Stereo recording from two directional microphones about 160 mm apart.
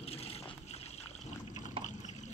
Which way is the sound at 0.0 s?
40° left (ahead or behind).